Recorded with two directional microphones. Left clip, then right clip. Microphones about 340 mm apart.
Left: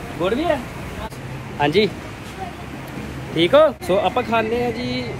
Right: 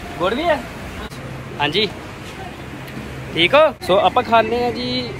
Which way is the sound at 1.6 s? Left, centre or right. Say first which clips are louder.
Left 1 dB; centre.